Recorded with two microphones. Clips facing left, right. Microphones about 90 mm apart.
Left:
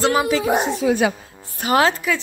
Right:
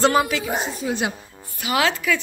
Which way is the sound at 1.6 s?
40° left (ahead or behind).